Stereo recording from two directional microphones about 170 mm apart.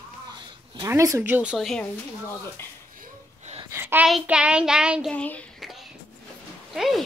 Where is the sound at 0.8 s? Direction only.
15° right (ahead or behind); by 1.9 s centre (ahead or behind).